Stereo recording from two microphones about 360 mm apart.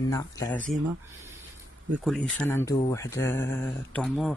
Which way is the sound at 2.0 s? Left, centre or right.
Centre.